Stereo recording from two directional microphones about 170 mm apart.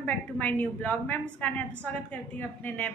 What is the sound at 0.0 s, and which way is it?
A woman's voice, 10° left (ahead or behind).